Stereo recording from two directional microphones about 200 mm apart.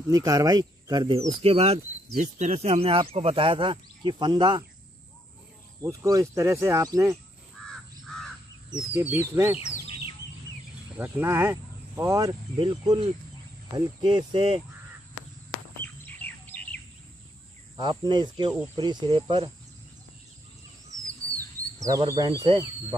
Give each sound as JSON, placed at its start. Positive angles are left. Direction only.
{"t": 0.1, "sound": "speech", "side_deg": -15}
{"t": 5.8, "sound": "speech", "side_deg": -15}
{"t": 7.6, "sound": "crow", "side_deg": 5}
{"t": 8.9, "sound": "speech", "side_deg": -10}
{"t": 11.0, "sound": "speech", "side_deg": -10}
{"t": 15.8, "sound": "bird", "side_deg": 10}
{"t": 17.7, "sound": "speech", "side_deg": -20}
{"t": 21.7, "sound": "speech", "side_deg": -15}